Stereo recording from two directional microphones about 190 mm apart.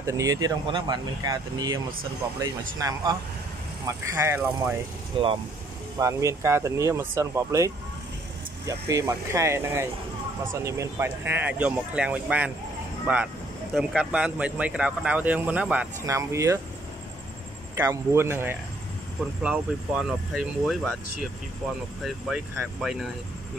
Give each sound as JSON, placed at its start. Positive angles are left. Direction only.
{"t": 0.0, "sound": "speech", "side_deg": -15}
{"t": 5.1, "sound": "speech", "side_deg": -25}
{"t": 5.9, "sound": "speech", "side_deg": -15}
{"t": 17.7, "sound": "speech", "side_deg": -15}
{"t": 22.0, "sound": "speech", "side_deg": 0}